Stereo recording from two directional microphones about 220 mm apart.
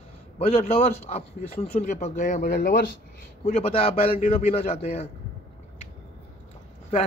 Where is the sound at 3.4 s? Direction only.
30° left (ahead or behind).